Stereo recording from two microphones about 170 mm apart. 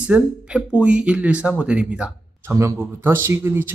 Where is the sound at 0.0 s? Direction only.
5° right (ahead or behind).